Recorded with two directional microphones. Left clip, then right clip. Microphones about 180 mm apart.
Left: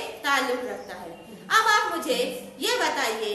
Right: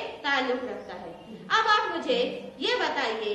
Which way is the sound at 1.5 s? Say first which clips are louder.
Left 2 dB; 15° left (ahead or behind).